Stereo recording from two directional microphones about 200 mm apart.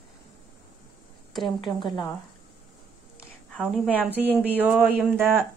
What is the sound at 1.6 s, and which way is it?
Speech, 25° left (ahead or behind).